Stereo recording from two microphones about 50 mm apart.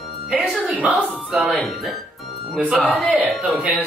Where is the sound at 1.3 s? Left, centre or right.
Centre.